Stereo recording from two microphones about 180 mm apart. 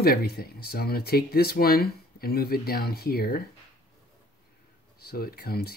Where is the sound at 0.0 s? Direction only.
55° left (ahead or behind).